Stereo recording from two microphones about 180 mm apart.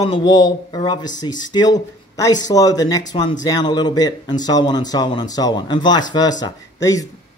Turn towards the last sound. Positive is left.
turn(degrees=20)  # may be behind; listen again after turning